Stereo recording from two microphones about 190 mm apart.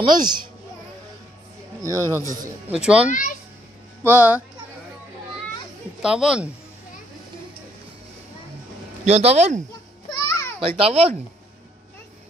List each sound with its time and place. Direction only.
0.0 s a child's voice: 20° right (ahead or behind)
1.8 s a man's voice: 15° right (ahead or behind)
2.7 s speech: 5° right (ahead or behind)
3.1 s a child's voice: 45° left (ahead or behind)
4.0 s a man's voice: 10° right (ahead or behind)
6.0 s speech: 5° right (ahead or behind)
9.0 s speech: 35° right (ahead or behind)
10.2 s a sound: 15° left (ahead or behind)
10.8 s speech: 30° right (ahead or behind)